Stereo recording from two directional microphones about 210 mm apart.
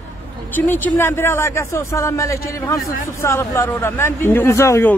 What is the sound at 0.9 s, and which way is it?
A man's voice, 10° left (ahead or behind).